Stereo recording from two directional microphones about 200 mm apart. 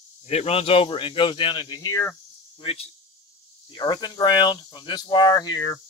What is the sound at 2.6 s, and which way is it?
Speech, 30° left (ahead or behind).